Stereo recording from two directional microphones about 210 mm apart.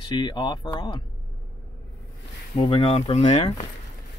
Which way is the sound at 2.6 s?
25° left (ahead or behind).